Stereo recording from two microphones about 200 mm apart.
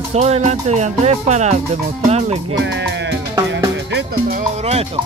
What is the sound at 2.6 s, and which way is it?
Music, 60° right (ahead or behind).